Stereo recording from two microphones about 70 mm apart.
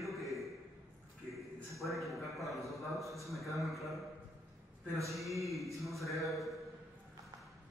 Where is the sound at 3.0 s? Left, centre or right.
Right.